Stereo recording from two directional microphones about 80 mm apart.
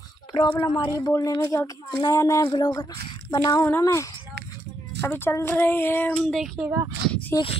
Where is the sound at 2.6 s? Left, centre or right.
Left.